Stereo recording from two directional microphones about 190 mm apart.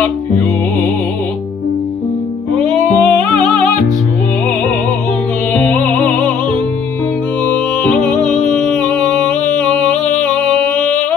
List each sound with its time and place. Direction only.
2.7 s music: 5° left (ahead or behind)
5.5 s music: 5° left (ahead or behind)
8.5 s music: 10° left (ahead or behind)